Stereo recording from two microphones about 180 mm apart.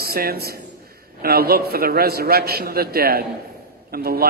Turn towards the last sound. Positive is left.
turn(degrees=-60)  # may be behind; listen again after turning